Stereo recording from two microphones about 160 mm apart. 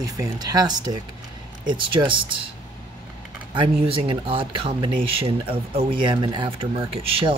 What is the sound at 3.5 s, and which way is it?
Speech, 30° right (ahead or behind).